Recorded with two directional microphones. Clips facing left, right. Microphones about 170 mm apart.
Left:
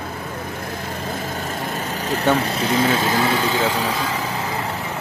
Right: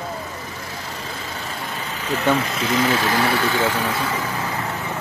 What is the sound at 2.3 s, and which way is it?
Speech, 35° left (ahead or behind).